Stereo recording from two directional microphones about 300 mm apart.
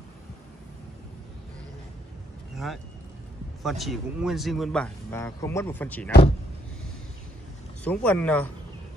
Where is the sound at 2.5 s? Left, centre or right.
Centre.